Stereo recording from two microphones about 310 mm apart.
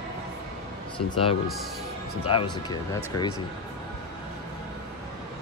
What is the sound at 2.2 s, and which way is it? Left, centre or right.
Speech, centre.